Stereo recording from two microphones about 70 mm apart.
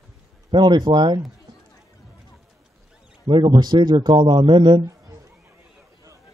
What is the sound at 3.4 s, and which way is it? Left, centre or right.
A man's voice, right.